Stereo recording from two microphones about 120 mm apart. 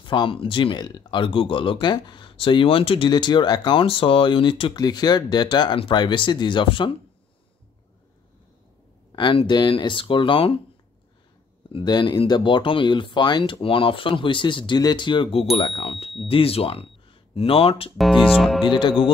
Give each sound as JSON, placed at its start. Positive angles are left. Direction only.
{"t": 0.0, "sound": "speech", "side_deg": 40}
{"t": 9.1, "sound": "speech", "side_deg": 45}
{"t": 11.8, "sound": "speech", "side_deg": 35}
{"t": 15.5, "sound": "speech", "side_deg": 50}
{"t": 17.9, "sound": "speech", "side_deg": 0}
{"t": 18.7, "sound": "speech", "side_deg": 40}